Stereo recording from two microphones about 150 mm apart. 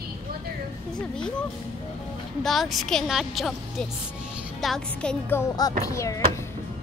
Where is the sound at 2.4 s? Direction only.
Centre (ahead or behind).